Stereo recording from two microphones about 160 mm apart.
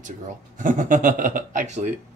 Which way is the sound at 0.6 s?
55° right (ahead or behind).